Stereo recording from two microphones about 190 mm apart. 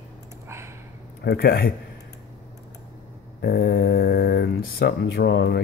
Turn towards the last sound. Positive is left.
turn(degrees=60)  # may be behind; listen again after turning